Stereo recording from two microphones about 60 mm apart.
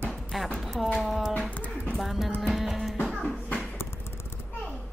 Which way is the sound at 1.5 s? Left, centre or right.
Left.